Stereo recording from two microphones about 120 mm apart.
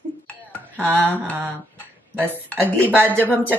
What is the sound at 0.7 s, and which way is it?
Speech, 15° right (ahead or behind).